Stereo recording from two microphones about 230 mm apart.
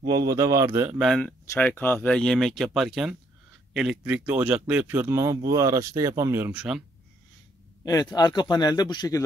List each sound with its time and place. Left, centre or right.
0.0 s a man's voice: centre
7.8 s a man's voice: centre